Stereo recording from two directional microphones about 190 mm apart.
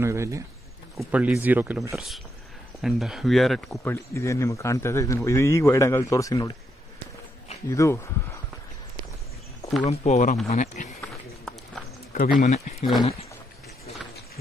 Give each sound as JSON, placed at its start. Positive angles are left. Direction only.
{"t": 0.0, "sound": "speech", "side_deg": -15}
{"t": 3.8, "sound": "speech", "side_deg": 15}
{"t": 7.7, "sound": "speech", "side_deg": 15}
{"t": 9.8, "sound": "speech", "side_deg": 40}
{"t": 12.1, "sound": "speech", "side_deg": 45}